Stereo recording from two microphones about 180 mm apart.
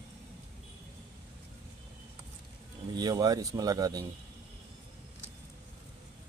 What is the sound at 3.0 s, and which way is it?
Speech, 20° right (ahead or behind).